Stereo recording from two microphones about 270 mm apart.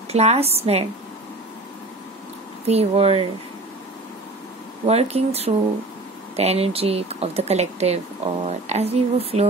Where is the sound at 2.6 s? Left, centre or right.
Right.